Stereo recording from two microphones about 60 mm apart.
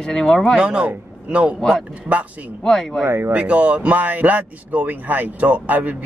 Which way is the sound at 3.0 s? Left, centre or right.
Right.